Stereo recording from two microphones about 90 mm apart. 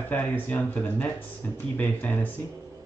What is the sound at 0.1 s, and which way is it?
Speech, 20° left (ahead or behind).